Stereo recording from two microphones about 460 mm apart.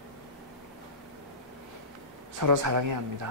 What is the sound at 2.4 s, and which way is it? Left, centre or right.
Speech, right.